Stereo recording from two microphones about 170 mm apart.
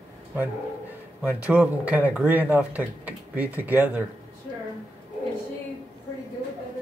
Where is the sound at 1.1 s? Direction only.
10° right (ahead or behind).